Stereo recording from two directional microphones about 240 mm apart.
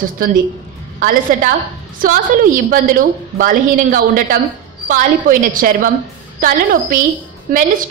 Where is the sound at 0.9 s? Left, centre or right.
Right.